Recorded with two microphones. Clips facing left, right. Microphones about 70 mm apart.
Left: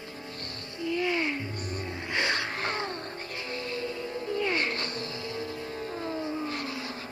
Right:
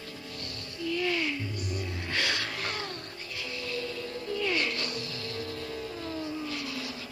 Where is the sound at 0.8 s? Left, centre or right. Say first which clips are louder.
Left 2 dB; left.